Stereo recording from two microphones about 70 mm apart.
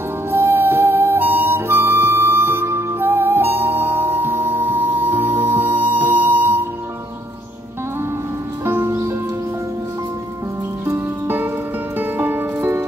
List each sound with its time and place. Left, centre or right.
0.3 s flute: right
8.6 s music: right
10.9 s music: right